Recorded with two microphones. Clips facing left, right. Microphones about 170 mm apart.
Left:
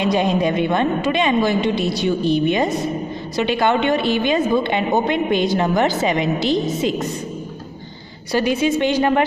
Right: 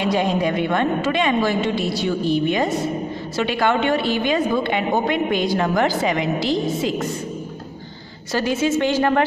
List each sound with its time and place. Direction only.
0.0 s a woman's voice: 20° left (ahead or behind)
8.3 s a woman's voice: 15° left (ahead or behind)